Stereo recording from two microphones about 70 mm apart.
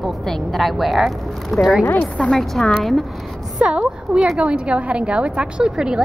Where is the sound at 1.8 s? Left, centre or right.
Left.